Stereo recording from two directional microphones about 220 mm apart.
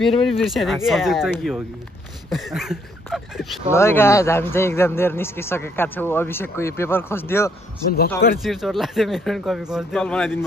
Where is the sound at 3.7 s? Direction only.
10° left (ahead or behind).